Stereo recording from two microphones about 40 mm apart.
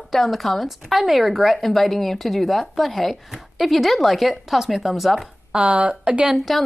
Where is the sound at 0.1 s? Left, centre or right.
Centre.